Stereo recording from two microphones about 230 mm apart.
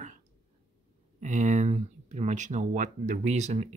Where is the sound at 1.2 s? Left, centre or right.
Right.